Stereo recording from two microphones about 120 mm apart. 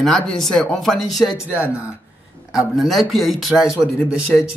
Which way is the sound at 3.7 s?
20° left (ahead or behind).